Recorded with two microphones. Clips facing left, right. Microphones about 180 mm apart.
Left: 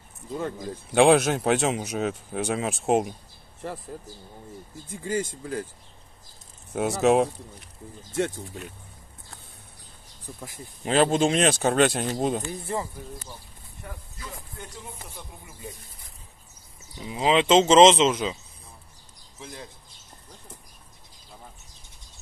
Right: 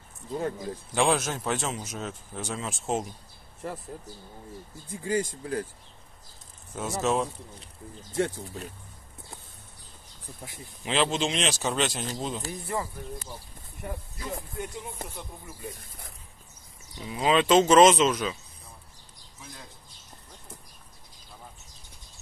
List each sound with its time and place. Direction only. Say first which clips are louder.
0.9 s speech: left 8 dB; 65° left (ahead or behind)
5.0 s speech: even; 25° left (ahead or behind)
6.7 s speech: left 7 dB; 65° left (ahead or behind)
10.4 s speech: left 4 dB; 40° left (ahead or behind)
12.4 s speech: left 2 dB; 25° left (ahead or behind)
17.0 s speech: left 2 dB; 20° left (ahead or behind)